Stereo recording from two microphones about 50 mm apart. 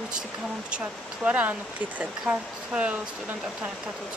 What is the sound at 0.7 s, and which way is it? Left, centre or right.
Speech, right.